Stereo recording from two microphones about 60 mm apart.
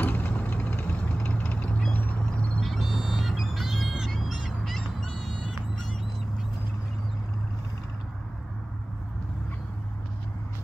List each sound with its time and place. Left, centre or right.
0.0 s vehicle: left
2.6 s bird: centre